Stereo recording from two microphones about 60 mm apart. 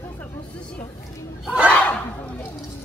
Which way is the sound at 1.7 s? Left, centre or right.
Left.